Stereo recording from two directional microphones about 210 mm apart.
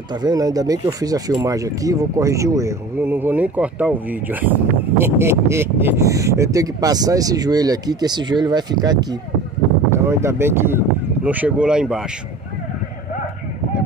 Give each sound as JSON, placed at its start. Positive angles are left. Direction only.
{"t": 0.2, "sound": "speech", "side_deg": -20}